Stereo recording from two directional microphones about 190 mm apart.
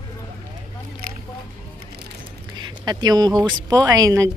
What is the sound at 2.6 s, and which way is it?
Speech, 20° right (ahead or behind).